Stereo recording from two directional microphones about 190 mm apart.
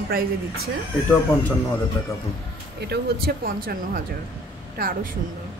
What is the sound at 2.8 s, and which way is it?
A woman's voice, 55° right (ahead or behind).